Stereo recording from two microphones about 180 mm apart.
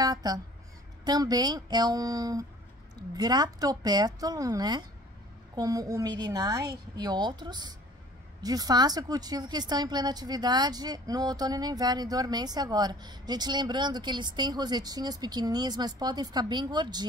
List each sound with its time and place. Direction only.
0.0 s speech: 20° right (ahead or behind)